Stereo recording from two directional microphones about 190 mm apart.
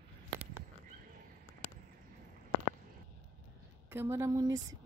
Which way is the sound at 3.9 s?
10° right (ahead or behind).